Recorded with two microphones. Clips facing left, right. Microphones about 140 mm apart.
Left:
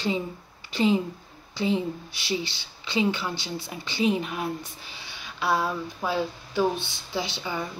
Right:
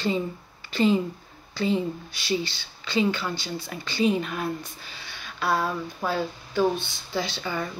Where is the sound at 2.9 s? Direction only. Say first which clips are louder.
Right 1 dB; 15° left (ahead or behind).